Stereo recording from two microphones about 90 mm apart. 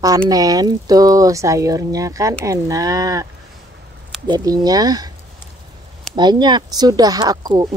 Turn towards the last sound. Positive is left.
turn(degrees=-45)  # may be behind; listen again after turning